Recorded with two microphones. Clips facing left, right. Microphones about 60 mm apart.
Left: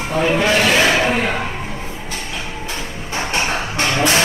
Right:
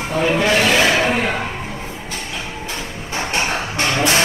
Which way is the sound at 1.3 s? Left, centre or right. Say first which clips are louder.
Left 1 dB; left.